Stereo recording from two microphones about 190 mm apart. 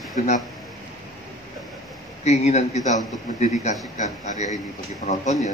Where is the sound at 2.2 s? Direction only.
35° left (ahead or behind).